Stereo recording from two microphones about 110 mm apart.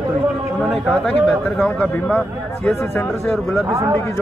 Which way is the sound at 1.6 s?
10° left (ahead or behind).